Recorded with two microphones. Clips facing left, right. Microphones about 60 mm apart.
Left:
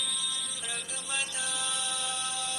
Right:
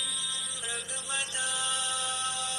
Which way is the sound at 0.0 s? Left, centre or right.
Right.